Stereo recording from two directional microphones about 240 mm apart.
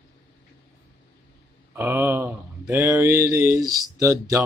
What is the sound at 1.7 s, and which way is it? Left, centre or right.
Mantra, centre.